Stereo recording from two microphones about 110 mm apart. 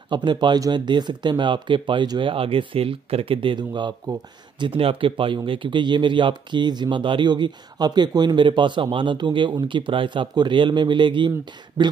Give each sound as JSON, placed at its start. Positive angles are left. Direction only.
{"t": 0.1, "sound": "speech", "side_deg": -45}
{"t": 4.6, "sound": "speech", "side_deg": -55}